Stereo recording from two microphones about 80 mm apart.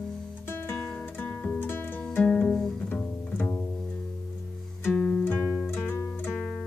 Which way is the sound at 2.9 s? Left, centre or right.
Left.